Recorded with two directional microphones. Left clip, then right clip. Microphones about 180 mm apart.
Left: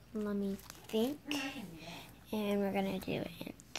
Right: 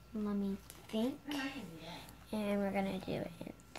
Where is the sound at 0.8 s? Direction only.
30° left (ahead or behind).